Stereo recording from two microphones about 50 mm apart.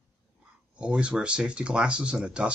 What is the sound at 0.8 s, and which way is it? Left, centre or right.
Speech, right.